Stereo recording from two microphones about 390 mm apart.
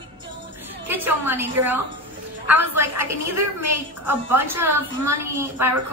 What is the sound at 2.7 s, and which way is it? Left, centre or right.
Speech, right.